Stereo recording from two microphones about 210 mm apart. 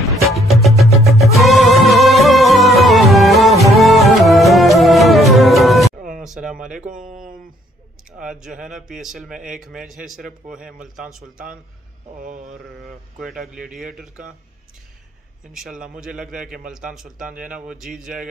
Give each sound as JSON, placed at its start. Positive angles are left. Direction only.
{"t": 0.3, "sound": "music", "side_deg": 0}
{"t": 6.1, "sound": "a sound", "side_deg": 0}
{"t": 6.8, "sound": "a sound", "side_deg": -40}
{"t": 8.2, "sound": "speech", "side_deg": -5}
{"t": 12.2, "sound": "mantra", "side_deg": -40}
{"t": 13.2, "sound": "speech", "side_deg": -5}
{"t": 15.5, "sound": "speech", "side_deg": -5}